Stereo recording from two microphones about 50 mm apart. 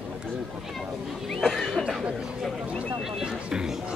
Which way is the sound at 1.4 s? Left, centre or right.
Centre.